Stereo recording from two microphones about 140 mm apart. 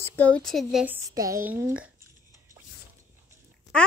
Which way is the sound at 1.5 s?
15° right (ahead or behind).